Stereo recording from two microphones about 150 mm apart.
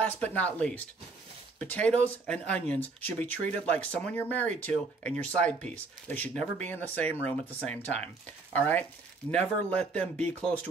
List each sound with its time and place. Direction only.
0.2 s speech: 10° left (ahead or behind)